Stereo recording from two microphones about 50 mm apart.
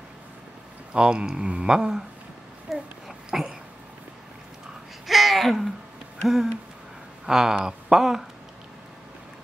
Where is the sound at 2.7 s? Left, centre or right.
Centre.